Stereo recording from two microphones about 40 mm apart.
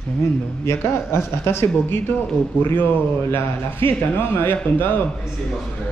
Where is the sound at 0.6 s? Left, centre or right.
Left.